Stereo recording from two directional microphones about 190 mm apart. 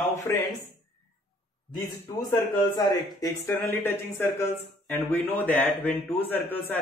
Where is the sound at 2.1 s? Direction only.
15° left (ahead or behind).